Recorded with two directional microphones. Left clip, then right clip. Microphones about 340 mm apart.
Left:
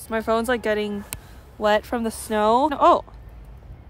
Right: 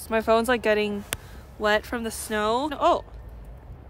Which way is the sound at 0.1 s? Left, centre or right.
Centre.